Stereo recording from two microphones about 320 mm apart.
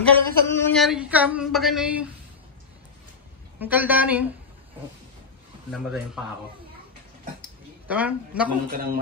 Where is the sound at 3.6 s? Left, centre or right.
Centre.